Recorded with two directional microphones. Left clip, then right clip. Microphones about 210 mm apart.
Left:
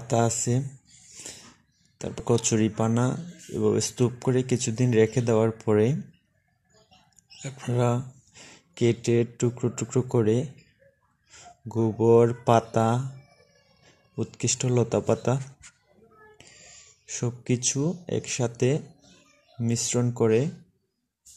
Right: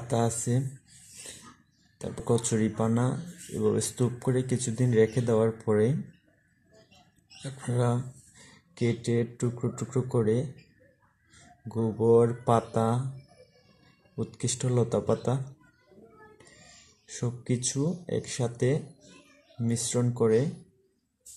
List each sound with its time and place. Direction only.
0.1 s speech: 25° left (ahead or behind)
2.0 s speech: 25° left (ahead or behind)
7.4 s speech: 25° left (ahead or behind)
14.1 s speech: 25° left (ahead or behind)
17.0 s speech: 25° left (ahead or behind)